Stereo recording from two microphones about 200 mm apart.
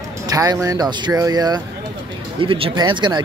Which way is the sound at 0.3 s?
15° right (ahead or behind).